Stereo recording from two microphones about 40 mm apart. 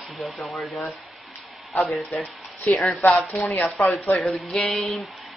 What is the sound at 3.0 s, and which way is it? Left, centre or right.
Speech, left.